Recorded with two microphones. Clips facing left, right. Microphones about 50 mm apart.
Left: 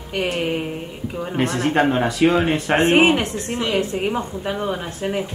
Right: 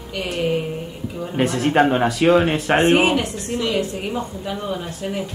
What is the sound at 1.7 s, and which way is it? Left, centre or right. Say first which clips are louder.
Speech: right 3 dB; centre.